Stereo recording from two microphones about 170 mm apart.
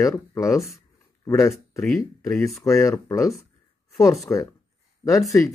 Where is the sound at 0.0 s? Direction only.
20° left (ahead or behind).